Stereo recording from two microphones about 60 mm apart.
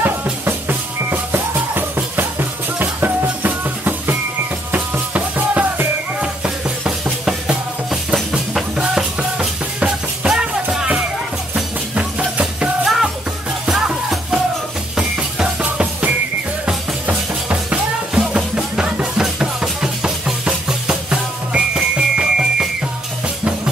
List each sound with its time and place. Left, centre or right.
0.0 s music: right
7.2 s music: centre
11.9 s music: centre
12.8 s music: centre
15.6 s music: right
18.1 s music: centre